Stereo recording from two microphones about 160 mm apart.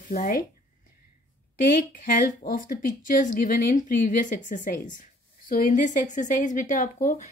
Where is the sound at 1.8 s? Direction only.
60° left (ahead or behind).